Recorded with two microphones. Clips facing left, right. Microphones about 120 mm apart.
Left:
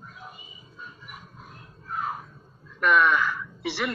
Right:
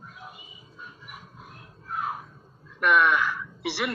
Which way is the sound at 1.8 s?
5° right (ahead or behind).